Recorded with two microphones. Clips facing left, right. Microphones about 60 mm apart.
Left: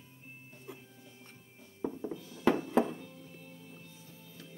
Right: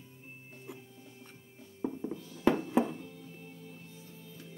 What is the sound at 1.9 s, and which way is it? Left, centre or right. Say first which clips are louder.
Music: right 1 dB; centre.